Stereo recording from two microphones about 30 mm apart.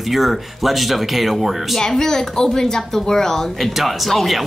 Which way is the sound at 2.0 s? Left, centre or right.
Centre.